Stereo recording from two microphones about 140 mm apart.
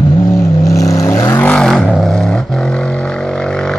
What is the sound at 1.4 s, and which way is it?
Vehicle, 5° left (ahead or behind).